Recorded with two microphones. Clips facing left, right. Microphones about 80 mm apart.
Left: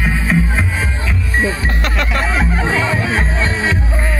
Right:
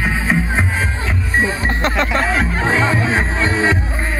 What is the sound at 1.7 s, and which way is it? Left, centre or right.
Music, right.